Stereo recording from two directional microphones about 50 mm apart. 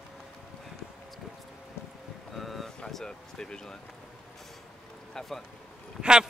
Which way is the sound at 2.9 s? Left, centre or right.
Centre.